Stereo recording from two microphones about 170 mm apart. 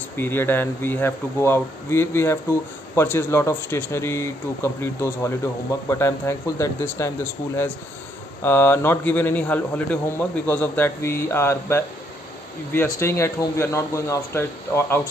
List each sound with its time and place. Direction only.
0.2 s a man's voice: 10° left (ahead or behind)
8.4 s a man's voice: 10° left (ahead or behind)